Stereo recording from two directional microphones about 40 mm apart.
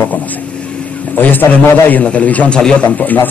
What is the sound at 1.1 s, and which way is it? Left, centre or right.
A man's voice, left.